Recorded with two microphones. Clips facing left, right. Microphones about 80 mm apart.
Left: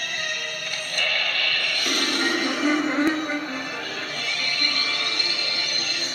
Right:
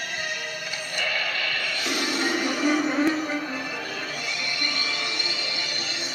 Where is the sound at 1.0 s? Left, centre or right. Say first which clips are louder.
Left 1 dB; centre.